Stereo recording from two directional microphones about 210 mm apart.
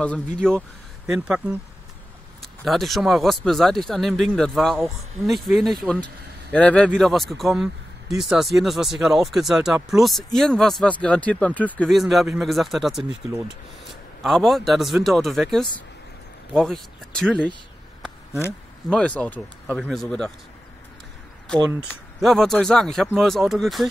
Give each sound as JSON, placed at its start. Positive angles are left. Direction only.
{"t": 0.4, "sound": "speech", "side_deg": 5}
{"t": 2.4, "sound": "speech", "side_deg": 0}
{"t": 21.5, "sound": "speech", "side_deg": -15}
{"t": 22.2, "sound": "speech", "side_deg": 0}